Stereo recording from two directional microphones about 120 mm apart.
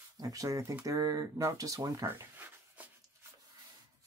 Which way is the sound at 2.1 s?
15° right (ahead or behind).